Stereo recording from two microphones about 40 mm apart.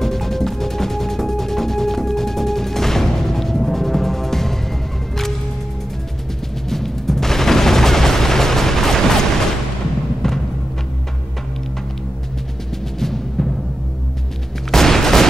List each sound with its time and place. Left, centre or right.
0.0 s music: centre
6.7 s gunshot: centre
13.0 s music: centre
14.7 s fusillade: centre